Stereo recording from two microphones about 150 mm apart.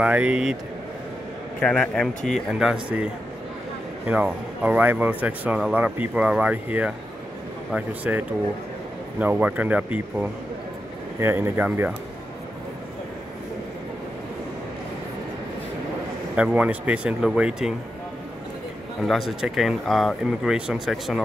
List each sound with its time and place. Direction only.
0.0 s speech: 10° right (ahead or behind)
1.6 s speech: 5° left (ahead or behind)
4.1 s speech: 10° right (ahead or behind)
9.2 s speech: 10° right (ahead or behind)
16.3 s speech: 10° right (ahead or behind)
18.9 s speech: centre (ahead or behind)